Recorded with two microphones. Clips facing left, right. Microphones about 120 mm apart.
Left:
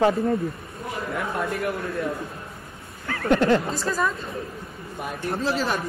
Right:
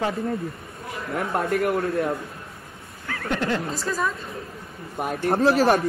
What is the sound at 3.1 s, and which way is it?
Speech, 30° left (ahead or behind).